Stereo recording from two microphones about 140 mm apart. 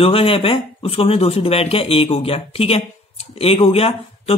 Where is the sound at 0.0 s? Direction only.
40° left (ahead or behind).